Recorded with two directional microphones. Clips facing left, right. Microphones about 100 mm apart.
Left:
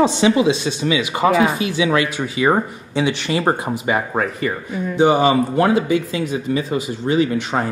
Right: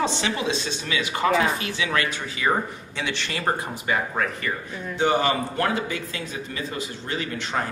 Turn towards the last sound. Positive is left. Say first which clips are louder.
# left 12 dB
turn(degrees=15)  # may be behind; listen again after turning